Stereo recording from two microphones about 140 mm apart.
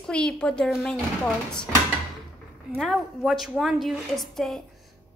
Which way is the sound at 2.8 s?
5° left (ahead or behind).